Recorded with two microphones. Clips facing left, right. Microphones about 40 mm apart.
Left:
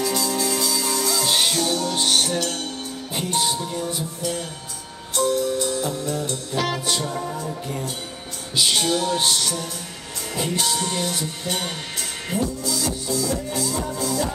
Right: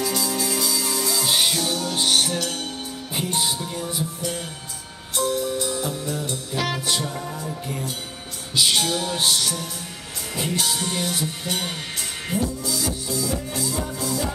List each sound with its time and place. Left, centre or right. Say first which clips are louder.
0.0 s music: left 2 dB; centre